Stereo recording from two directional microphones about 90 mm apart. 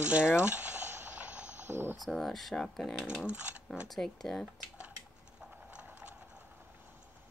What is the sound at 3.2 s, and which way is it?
Speech, 15° right (ahead or behind).